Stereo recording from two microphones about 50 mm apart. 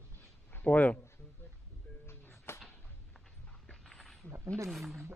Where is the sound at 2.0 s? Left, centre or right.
Left.